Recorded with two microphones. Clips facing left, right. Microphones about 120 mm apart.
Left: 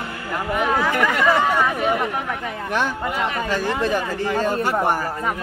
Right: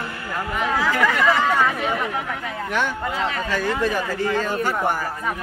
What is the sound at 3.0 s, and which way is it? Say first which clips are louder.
Speech: left 1 dB; 15° left (ahead or behind).